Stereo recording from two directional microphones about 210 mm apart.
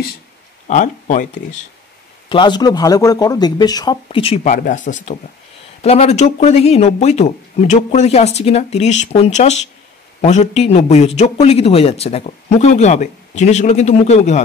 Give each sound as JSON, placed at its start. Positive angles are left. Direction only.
{"t": 0.7, "sound": "speech", "side_deg": 35}
{"t": 2.2, "sound": "speech", "side_deg": 20}